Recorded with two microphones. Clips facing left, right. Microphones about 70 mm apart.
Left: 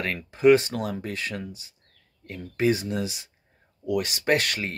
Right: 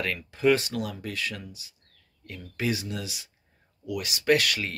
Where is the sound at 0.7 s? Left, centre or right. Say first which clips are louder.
Left 3 dB; left.